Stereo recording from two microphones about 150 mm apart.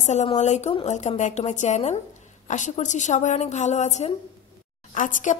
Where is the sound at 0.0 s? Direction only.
50° left (ahead or behind).